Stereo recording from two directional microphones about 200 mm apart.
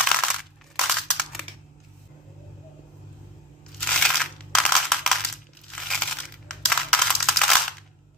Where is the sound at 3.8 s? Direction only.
Centre (ahead or behind).